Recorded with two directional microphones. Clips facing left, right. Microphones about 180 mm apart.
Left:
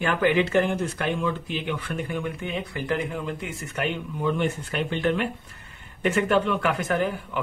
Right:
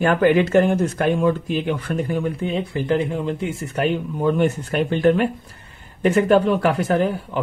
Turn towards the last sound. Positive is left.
turn(degrees=-35)  # may be behind; listen again after turning